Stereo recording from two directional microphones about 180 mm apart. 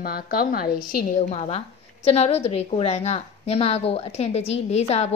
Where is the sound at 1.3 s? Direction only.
35° left (ahead or behind).